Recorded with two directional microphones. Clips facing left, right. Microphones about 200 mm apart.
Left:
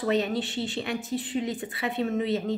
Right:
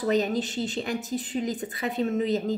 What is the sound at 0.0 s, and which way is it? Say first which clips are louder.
Speech: right 1 dB; 40° right (ahead or behind).